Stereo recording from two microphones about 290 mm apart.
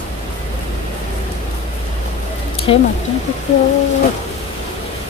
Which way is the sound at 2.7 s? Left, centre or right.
Centre.